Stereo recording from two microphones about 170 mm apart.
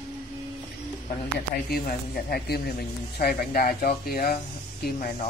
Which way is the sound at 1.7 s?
65° left (ahead or behind).